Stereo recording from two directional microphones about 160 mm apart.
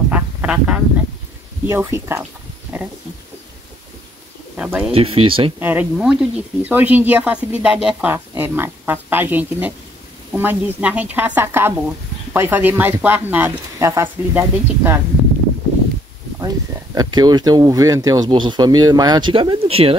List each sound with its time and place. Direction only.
0.1 s a sound: 10° right (ahead or behind)
1.7 s speech: 15° right (ahead or behind)
2.7 s a sound: 10° right (ahead or behind)
4.6 s speech: 10° right (ahead or behind)
4.9 s speech: 35° right (ahead or behind)
5.6 s speech: 10° right (ahead or behind)
16.3 s speech: 25° right (ahead or behind)